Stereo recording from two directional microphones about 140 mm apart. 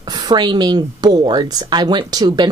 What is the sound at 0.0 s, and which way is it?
A woman's voice, 30° right (ahead or behind).